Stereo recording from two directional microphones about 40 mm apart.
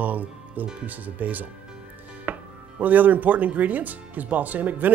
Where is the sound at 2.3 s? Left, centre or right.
Right.